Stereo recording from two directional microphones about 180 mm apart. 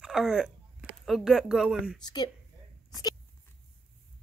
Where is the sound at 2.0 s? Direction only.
25° left (ahead or behind).